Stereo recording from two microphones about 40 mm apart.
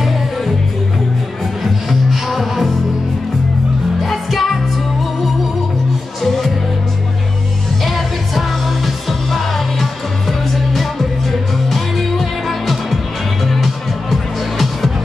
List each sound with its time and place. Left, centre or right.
1.6 s music: centre
4.0 s music: centre
6.2 s music: centre
7.8 s music: centre